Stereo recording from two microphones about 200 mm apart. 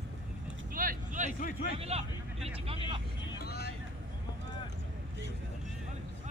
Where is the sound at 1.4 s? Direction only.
50° left (ahead or behind).